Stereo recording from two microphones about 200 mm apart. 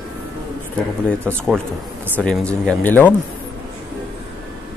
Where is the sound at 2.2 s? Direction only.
5° left (ahead or behind).